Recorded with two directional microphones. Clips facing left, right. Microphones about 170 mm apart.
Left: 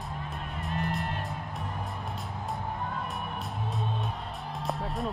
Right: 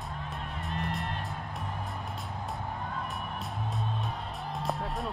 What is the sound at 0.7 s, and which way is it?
Music, centre (ahead or behind).